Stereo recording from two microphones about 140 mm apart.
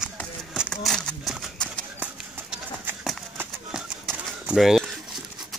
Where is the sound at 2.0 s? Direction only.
10° right (ahead or behind).